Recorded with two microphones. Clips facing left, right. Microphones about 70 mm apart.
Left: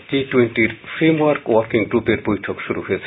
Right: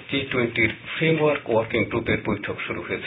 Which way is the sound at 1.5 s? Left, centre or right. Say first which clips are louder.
Left 6 dB; left.